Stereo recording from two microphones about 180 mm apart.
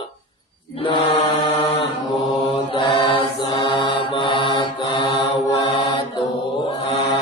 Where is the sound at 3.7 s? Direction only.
25° left (ahead or behind).